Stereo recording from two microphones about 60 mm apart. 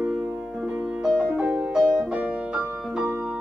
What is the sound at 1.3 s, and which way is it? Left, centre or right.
Music, centre.